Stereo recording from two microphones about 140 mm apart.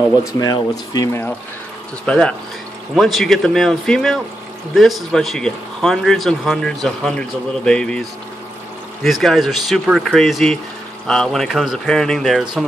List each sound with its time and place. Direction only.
0.3 s speech: 25° left (ahead or behind)
2.0 s speech: 5° left (ahead or behind)
9.0 s speech: centre (ahead or behind)